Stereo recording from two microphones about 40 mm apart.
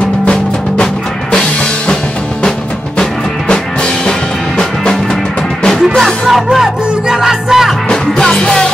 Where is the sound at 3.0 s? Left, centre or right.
Centre.